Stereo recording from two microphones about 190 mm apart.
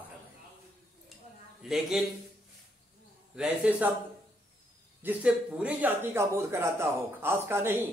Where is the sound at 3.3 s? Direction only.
5° right (ahead or behind).